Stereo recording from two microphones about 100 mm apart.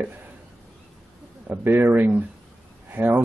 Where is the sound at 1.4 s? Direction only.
20° right (ahead or behind).